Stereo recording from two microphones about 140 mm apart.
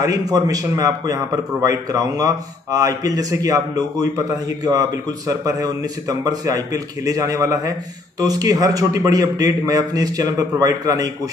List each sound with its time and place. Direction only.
0.0 s a man's voice: 25° right (ahead or behind)